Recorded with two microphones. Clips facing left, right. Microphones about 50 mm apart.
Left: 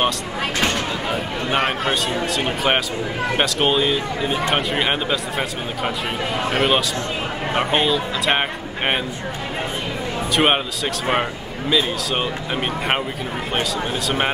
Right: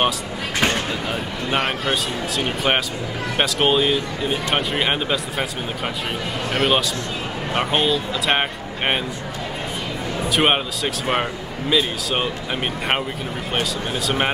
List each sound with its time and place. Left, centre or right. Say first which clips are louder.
0.6 s a sound: right 2 dB; centre
1.5 s speech: left 1 dB; centre
6.5 s speech: right 1 dB; centre
10.3 s speech: left 1 dB; centre
13.6 s speech: left 1 dB; centre